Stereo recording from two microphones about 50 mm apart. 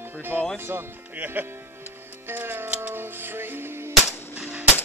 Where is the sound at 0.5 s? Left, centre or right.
Right.